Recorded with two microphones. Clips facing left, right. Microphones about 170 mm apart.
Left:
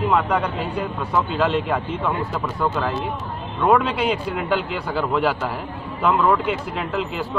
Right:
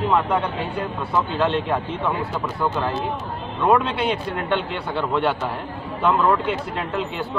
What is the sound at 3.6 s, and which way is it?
A man's voice, 5° right (ahead or behind).